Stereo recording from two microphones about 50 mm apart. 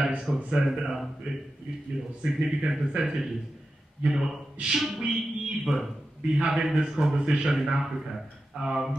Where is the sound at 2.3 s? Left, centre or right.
Centre.